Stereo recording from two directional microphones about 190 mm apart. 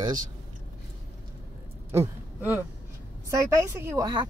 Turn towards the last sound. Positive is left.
turn(degrees=-20)  # may be behind; listen again after turning